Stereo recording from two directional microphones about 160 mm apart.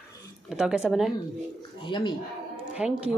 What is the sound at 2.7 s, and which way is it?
Speech, 5° right (ahead or behind).